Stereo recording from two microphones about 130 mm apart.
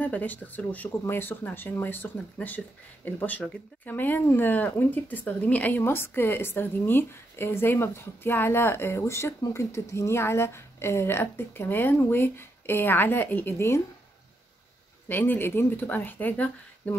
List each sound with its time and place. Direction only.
0.0 s speech: 15° left (ahead or behind)
15.0 s speech: 15° left (ahead or behind)